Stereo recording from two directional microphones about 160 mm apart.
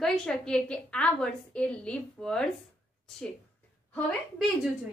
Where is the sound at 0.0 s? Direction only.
5° left (ahead or behind).